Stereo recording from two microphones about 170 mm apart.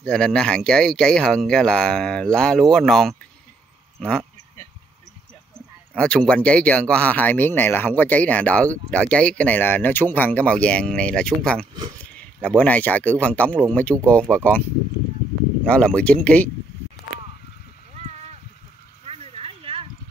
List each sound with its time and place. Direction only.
0.0 s speech: 5° left (ahead or behind)
5.9 s speech: 5° left (ahead or behind)
13.9 s speech: 15° right (ahead or behind)
14.3 s speech: 10° left (ahead or behind)
15.6 s speech: 5° left (ahead or behind)
17.9 s a sound: 40° right (ahead or behind)